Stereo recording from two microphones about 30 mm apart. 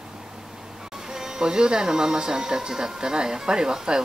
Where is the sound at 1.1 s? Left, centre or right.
Right.